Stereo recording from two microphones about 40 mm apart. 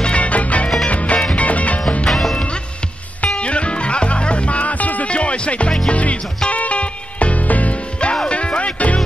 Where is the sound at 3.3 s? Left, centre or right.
Left.